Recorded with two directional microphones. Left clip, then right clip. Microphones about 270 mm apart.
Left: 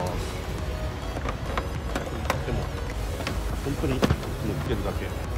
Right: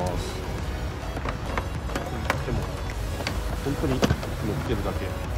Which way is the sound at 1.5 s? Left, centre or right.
Centre.